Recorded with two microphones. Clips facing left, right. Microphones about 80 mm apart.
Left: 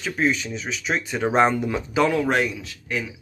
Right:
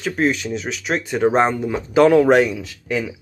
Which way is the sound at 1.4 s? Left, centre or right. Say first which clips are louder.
Right 1 dB; centre.